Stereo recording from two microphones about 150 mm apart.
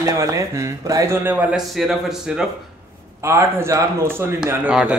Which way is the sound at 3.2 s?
15° right (ahead or behind).